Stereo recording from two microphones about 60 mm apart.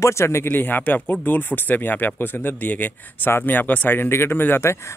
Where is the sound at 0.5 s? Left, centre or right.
Left.